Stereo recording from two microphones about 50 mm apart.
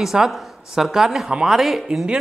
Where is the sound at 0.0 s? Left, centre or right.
Centre.